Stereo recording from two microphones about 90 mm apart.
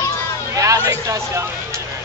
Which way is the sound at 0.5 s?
40° right (ahead or behind).